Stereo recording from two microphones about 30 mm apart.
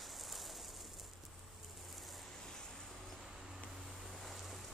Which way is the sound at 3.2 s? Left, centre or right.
Centre.